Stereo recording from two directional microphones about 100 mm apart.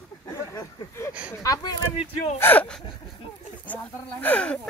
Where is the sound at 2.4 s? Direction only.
15° left (ahead or behind).